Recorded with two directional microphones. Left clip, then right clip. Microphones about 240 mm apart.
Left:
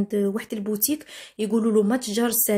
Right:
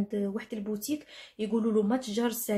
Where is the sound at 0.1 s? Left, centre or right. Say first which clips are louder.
Left 8 dB; left.